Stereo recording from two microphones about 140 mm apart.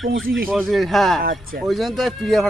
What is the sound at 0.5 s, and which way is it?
Speech, centre (ahead or behind).